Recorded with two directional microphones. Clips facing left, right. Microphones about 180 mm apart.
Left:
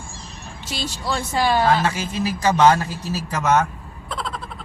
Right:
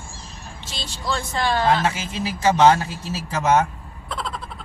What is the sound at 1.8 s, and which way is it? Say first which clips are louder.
A man's voice: left 2 dB; 25° right (ahead or behind).